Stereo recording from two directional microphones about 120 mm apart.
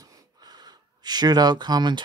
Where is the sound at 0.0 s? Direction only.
30° right (ahead or behind).